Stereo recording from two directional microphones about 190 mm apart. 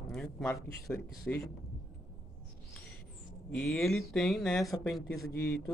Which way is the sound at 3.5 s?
5° left (ahead or behind).